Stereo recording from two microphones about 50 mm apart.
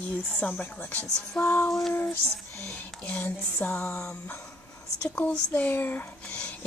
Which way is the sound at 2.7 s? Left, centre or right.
Left.